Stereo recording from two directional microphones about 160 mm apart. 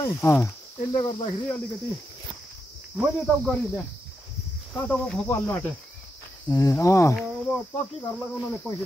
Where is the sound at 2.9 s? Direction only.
Centre (ahead or behind).